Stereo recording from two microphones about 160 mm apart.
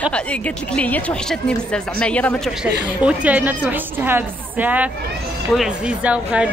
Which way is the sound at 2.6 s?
5° right (ahead or behind).